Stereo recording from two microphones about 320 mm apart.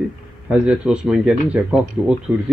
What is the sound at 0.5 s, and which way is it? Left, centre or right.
Speech, centre.